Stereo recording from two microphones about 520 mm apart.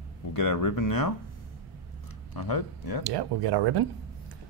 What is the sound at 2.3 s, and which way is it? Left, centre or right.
Speech, left.